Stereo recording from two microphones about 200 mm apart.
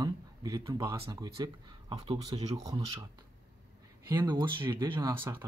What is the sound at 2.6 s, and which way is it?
Speech, 15° right (ahead or behind).